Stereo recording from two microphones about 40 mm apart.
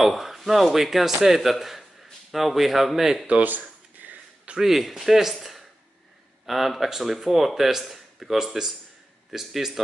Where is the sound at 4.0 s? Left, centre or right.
Right.